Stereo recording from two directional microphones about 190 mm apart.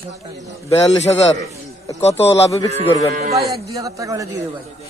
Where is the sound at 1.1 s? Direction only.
20° left (ahead or behind).